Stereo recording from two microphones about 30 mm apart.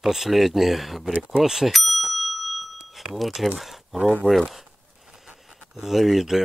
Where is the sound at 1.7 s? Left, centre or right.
Centre.